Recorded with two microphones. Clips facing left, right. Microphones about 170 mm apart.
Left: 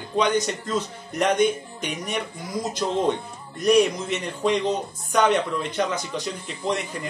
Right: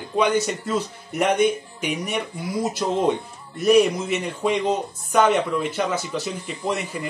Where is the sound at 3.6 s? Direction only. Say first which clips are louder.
Right 2 dB; 5° right (ahead or behind).